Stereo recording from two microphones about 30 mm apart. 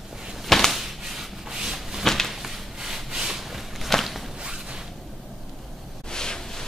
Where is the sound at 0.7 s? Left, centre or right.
Centre.